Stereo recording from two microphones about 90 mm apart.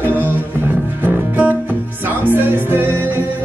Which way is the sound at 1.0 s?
20° right (ahead or behind).